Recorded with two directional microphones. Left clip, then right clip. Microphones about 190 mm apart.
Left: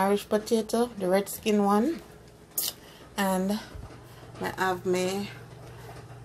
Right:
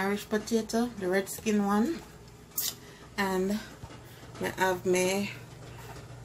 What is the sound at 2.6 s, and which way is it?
Squish, 30° left (ahead or behind).